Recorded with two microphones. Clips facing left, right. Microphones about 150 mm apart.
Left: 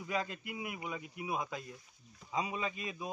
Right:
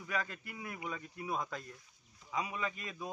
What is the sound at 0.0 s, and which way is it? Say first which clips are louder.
A man's voice: left 2 dB; 20° left (ahead or behind).